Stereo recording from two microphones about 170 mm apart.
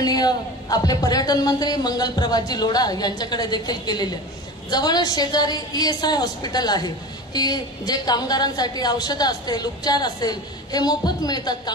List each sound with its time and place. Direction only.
0.0 s a woman's voice: 25° left (ahead or behind)